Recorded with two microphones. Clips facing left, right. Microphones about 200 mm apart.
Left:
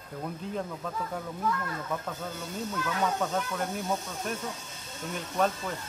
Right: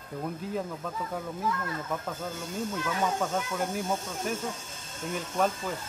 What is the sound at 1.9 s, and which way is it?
Speech, 5° right (ahead or behind).